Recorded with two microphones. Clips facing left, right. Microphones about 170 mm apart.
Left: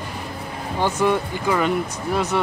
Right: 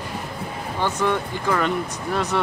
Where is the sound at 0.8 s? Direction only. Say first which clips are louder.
Left 3 dB; 10° left (ahead or behind).